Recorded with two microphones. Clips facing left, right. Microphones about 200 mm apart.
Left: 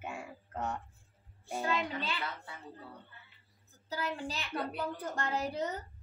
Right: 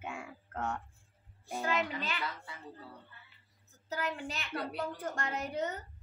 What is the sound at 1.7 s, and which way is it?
Speech, 30° left (ahead or behind).